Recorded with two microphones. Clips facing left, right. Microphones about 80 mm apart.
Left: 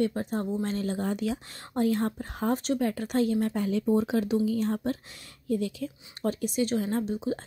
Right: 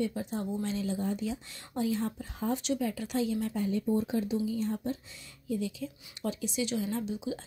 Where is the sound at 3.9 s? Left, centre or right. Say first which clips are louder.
Left 5 dB; left.